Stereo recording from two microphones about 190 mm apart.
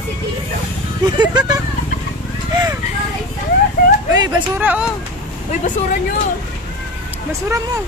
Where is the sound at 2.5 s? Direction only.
20° right (ahead or behind).